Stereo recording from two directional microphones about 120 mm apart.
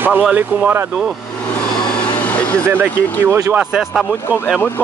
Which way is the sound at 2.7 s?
20° right (ahead or behind).